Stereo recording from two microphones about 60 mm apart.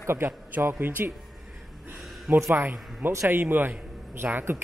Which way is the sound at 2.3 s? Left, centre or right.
Right.